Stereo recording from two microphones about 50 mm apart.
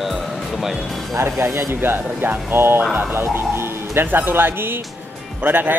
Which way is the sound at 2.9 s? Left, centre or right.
Right.